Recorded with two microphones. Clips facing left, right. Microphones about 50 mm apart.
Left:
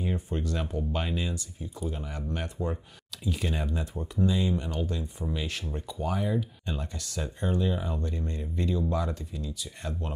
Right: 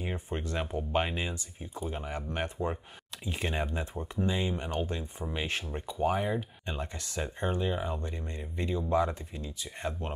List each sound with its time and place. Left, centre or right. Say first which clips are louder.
0.0 s speech: left 4 dB; right